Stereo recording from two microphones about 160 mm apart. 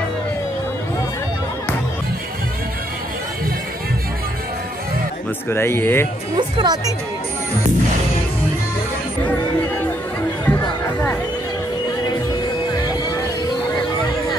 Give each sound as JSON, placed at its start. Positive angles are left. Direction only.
{"t": 5.5, "sound": "speech", "side_deg": 15}
{"t": 6.3, "sound": "speech", "side_deg": -25}
{"t": 10.4, "sound": "chatter", "side_deg": 10}